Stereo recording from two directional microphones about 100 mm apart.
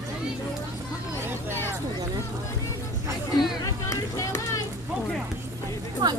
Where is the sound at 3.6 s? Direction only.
30° left (ahead or behind).